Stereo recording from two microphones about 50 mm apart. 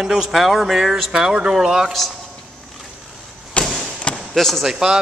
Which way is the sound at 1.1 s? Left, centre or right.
Centre.